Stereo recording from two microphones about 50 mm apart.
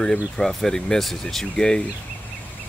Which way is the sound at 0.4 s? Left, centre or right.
Centre.